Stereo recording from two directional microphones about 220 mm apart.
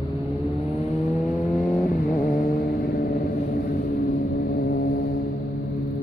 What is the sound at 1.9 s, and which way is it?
Vehicle, 40° left (ahead or behind).